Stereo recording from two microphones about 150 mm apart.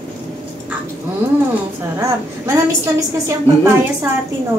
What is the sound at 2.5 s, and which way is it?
A woman's voice, 20° right (ahead or behind).